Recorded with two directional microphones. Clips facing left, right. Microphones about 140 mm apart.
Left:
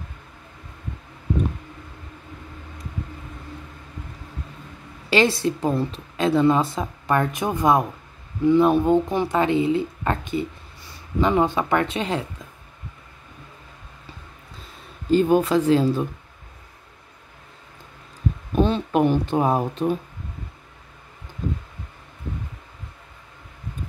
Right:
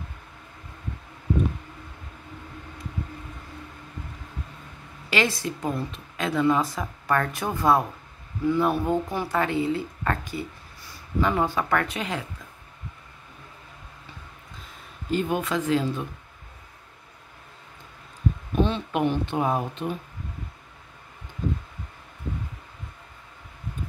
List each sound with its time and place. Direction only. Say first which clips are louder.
5.1 s a woman's voice: left 6 dB; 30° left (ahead or behind)
15.0 s speech: left 8 dB; 35° left (ahead or behind)
18.5 s speech: left 5 dB; 40° left (ahead or behind)